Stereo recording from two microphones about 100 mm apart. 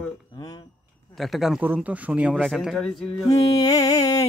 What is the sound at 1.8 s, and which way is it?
Speech, 15° right (ahead or behind).